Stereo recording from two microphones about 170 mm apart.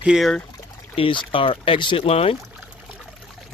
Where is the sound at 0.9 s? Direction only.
30° left (ahead or behind).